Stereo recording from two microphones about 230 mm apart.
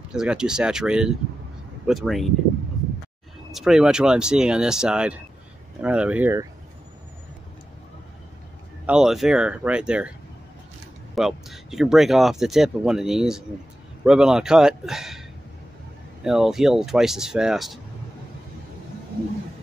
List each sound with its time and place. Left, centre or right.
0.1 s speech: centre
3.5 s speech: centre
8.8 s speech: centre
11.1 s speech: centre
16.3 s speech: centre